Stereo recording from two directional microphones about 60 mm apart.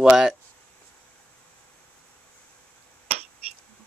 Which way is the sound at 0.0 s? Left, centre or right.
Centre.